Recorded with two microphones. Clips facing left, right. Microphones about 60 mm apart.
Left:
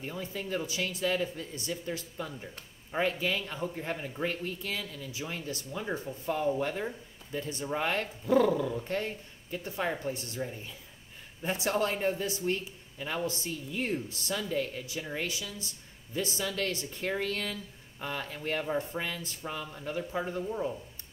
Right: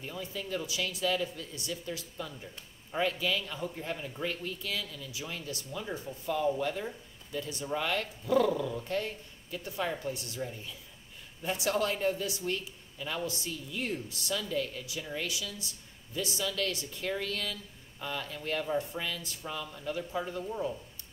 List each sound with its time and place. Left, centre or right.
0.0 s speech: left
2.4 s speech: left
8.5 s speech: centre
8.8 s speech: left
11.4 s speech: left